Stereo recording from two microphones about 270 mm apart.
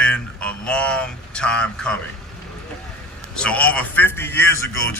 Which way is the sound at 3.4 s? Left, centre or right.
Centre.